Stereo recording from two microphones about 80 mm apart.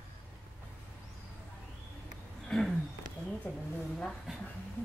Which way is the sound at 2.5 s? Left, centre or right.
Centre.